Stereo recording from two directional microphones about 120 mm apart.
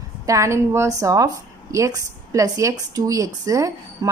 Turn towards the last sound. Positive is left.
turn(degrees=-30)  # may be behind; listen again after turning